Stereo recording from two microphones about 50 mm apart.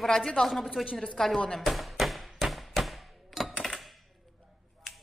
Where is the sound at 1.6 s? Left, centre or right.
Centre.